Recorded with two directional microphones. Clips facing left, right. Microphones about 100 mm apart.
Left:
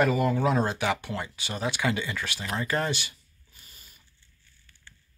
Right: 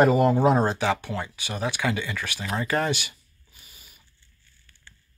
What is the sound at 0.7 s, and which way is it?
Speech, 10° left (ahead or behind).